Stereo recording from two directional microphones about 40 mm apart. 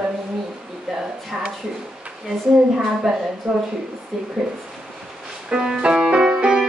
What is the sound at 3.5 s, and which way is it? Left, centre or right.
Speech, right.